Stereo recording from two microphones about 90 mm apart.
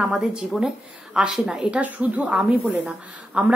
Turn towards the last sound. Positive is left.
turn(degrees=-15)  # may be behind; listen again after turning